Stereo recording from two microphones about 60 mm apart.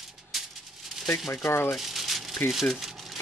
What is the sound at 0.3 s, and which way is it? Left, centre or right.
Maraca, centre.